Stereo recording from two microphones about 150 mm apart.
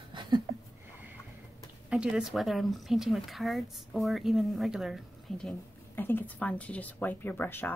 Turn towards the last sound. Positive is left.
turn(degrees=15)  # may be behind; listen again after turning